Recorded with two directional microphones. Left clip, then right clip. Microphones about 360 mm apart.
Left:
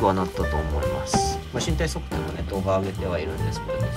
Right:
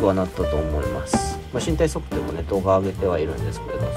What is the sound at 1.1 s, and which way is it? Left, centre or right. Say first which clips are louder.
Music: even; centre.